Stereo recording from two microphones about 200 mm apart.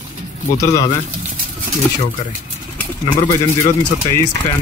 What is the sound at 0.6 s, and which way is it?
Speech, 15° left (ahead or behind).